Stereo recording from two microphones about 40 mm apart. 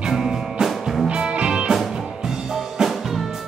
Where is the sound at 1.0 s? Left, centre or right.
Right.